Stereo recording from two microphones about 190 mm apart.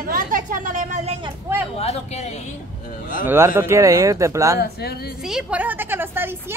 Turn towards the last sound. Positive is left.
turn(degrees=-10)  # may be behind; listen again after turning